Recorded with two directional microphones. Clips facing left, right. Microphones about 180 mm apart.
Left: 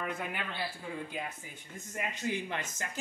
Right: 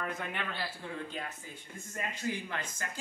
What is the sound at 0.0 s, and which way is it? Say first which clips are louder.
A man's voice: even; 5° left (ahead or behind).